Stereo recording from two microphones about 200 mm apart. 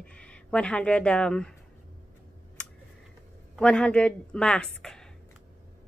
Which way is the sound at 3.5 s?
5° left (ahead or behind).